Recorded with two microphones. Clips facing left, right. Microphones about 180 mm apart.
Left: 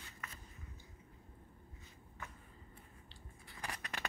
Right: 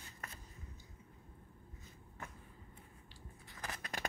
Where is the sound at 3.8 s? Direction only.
45° right (ahead or behind).